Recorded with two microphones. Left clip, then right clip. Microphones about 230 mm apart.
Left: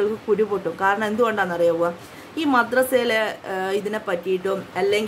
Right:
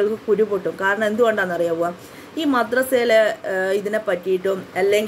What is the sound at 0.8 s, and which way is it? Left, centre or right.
A woman's voice, centre.